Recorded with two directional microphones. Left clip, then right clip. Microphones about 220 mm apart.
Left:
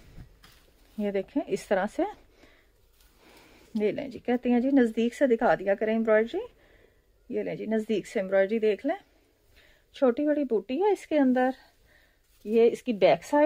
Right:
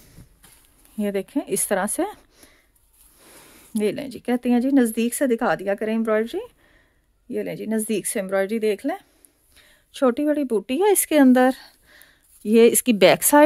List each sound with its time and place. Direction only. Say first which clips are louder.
0.9 s a woman's voice: right 4 dB; 20° right (ahead or behind)
3.7 s speech: right 4 dB; 20° right (ahead or behind); by 13.4 s 45° right (ahead or behind)